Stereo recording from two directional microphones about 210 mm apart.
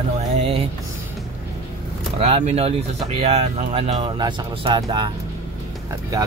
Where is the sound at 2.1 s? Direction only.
30° right (ahead or behind).